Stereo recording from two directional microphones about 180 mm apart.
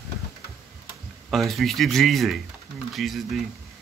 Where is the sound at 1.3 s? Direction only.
Centre (ahead or behind).